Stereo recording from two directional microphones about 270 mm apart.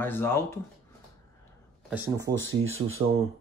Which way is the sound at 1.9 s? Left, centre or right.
Centre.